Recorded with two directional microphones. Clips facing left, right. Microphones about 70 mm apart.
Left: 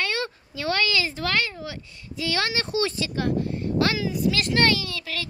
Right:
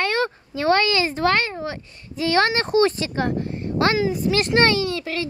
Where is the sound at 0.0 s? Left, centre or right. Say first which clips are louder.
Right 6 dB; right.